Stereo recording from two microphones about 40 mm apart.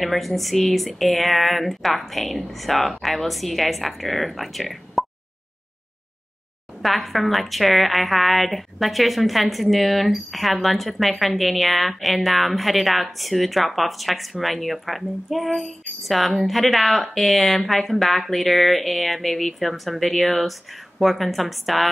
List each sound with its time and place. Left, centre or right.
0.0 s a woman's voice: centre
6.8 s a woman's voice: centre